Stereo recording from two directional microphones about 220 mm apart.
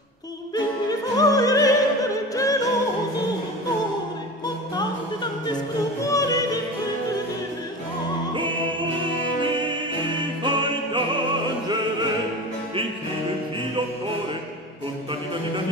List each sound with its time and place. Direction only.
0.8 s opera: 15° left (ahead or behind)
2.3 s music: 15° left (ahead or behind)
4.7 s music: 20° left (ahead or behind)
9.4 s music: 20° right (ahead or behind)